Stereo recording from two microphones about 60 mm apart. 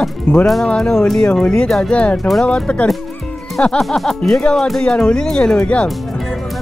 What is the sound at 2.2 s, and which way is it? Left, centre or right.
Speech, centre.